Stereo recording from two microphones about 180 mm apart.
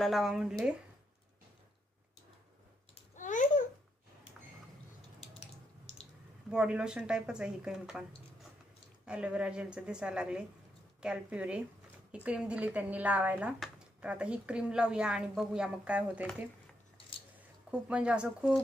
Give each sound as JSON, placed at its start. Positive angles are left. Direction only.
{"t": 0.0, "sound": "speech", "side_deg": 0}
{"t": 2.9, "sound": "babbling", "side_deg": 45}
{"t": 6.5, "sound": "speech", "side_deg": -5}
{"t": 17.6, "sound": "speech", "side_deg": -5}